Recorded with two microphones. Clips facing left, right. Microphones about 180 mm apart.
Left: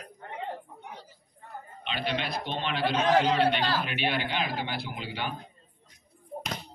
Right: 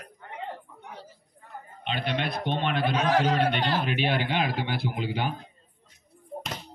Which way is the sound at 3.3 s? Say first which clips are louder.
Even; 45° right (ahead or behind).